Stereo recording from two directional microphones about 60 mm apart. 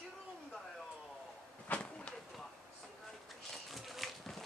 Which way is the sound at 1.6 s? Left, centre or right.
Left.